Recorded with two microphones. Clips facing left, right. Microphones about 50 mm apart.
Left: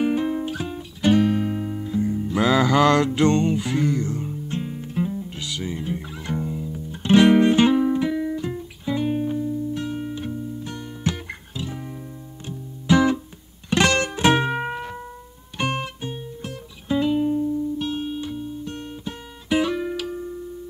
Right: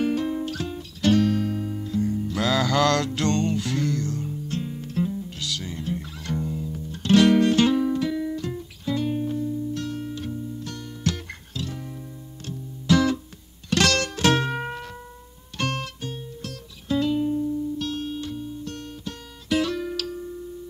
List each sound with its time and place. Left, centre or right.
0.0 s music: centre